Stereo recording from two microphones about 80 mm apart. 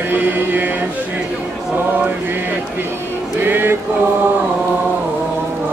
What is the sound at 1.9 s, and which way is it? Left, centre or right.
Mantra, right.